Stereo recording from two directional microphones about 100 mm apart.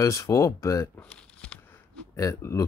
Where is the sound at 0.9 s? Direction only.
10° left (ahead or behind).